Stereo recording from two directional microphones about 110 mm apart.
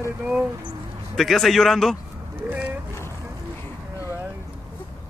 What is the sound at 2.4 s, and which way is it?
Speech, 20° right (ahead or behind).